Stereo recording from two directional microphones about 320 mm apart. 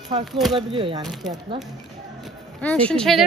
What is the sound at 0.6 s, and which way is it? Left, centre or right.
Speech, centre.